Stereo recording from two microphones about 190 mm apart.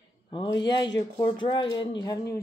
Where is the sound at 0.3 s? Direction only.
25° left (ahead or behind).